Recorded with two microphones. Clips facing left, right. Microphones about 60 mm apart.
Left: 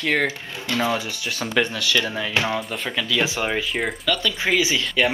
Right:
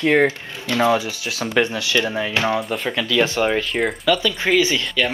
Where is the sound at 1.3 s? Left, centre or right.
Centre.